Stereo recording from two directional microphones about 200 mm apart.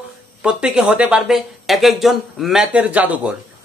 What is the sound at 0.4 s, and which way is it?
Speech, 5° right (ahead or behind).